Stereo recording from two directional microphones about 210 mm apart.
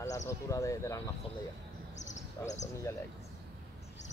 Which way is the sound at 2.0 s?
35° left (ahead or behind).